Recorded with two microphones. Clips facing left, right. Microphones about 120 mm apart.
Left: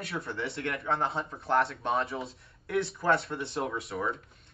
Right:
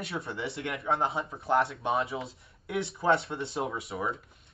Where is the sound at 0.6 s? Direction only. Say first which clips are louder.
Right 1 dB; centre (ahead or behind).